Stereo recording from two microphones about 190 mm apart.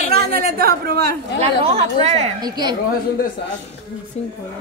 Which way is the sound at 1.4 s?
30° right (ahead or behind).